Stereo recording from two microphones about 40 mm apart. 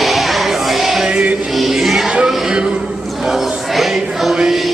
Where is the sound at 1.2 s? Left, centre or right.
Right.